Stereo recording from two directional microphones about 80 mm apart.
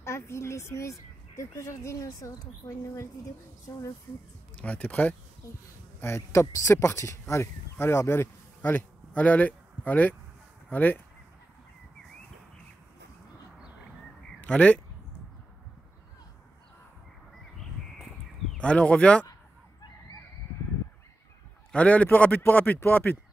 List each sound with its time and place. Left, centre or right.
0.0 s speech: left
4.6 s speech: centre
5.9 s speech: left
14.4 s speech: centre
18.6 s speech: centre
21.7 s a man's voice: centre